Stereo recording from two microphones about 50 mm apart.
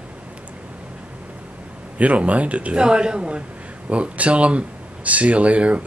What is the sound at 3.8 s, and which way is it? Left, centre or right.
Speech, right.